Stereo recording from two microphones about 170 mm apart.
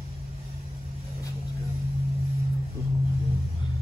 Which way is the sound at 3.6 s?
30° left (ahead or behind).